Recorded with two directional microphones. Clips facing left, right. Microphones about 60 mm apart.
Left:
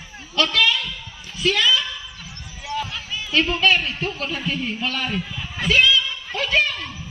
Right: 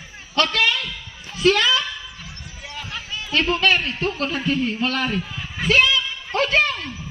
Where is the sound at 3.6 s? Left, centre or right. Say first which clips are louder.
Even; right.